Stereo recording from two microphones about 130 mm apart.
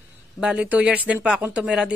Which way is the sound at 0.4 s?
10° right (ahead or behind).